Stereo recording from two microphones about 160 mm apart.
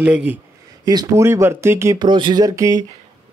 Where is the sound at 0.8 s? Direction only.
25° right (ahead or behind).